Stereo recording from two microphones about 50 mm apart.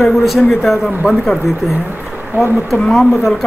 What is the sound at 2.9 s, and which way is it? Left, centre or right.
Speech, centre.